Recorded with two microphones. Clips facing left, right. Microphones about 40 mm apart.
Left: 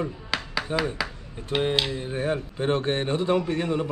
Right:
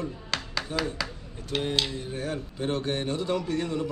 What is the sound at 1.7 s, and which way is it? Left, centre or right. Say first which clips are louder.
Speech: left 3 dB; centre.